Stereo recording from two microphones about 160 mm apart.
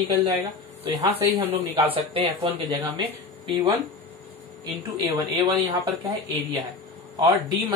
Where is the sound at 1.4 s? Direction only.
35° right (ahead or behind).